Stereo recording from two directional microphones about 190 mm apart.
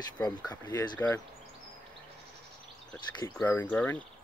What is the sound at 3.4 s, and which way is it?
Speech, 10° left (ahead or behind).